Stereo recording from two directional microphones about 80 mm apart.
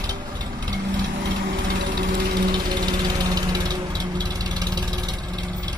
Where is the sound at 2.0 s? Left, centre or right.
Right.